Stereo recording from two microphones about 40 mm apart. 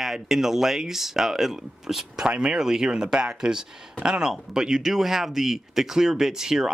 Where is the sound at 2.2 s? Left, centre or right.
Right.